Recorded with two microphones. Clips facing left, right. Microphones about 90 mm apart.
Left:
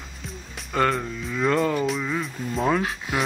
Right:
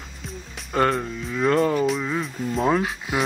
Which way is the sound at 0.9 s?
5° right (ahead or behind).